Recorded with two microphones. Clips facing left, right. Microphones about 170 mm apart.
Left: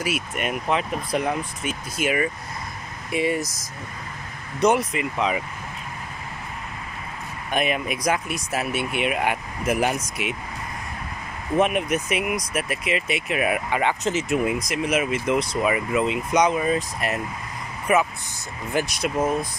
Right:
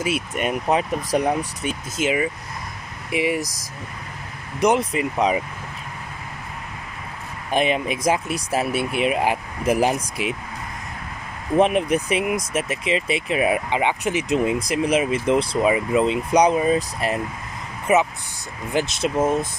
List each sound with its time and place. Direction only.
0.0 s speech: 30° right (ahead or behind)
2.0 s speech: 20° right (ahead or behind)
4.7 s speech: 35° right (ahead or behind)
7.5 s speech: 25° right (ahead or behind)
11.5 s speech: 30° right (ahead or behind); by 14.4 s 15° right (ahead or behind)
14.4 s speech: 30° right (ahead or behind)